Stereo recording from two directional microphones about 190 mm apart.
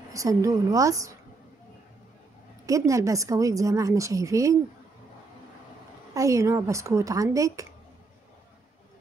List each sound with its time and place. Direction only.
0.1 s a woman's voice: 15° right (ahead or behind)
2.6 s a woman's voice: 15° right (ahead or behind)
6.1 s a woman's voice: 15° right (ahead or behind)